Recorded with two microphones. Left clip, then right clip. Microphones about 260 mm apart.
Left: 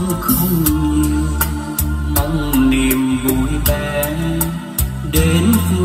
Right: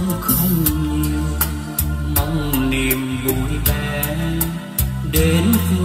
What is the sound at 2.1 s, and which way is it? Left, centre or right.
Music, centre.